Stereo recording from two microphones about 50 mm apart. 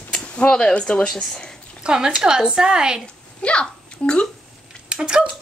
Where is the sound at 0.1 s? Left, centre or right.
Centre.